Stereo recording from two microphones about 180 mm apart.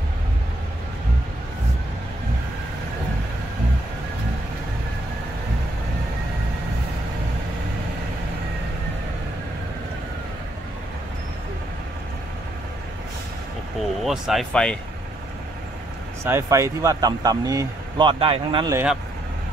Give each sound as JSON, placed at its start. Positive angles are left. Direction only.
{"t": 14.0, "sound": "speech", "side_deg": 0}
{"t": 16.3, "sound": "speech", "side_deg": -15}
{"t": 18.7, "sound": "speech", "side_deg": -10}